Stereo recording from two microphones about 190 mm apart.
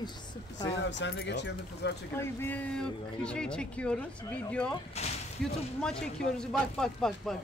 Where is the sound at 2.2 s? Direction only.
10° left (ahead or behind).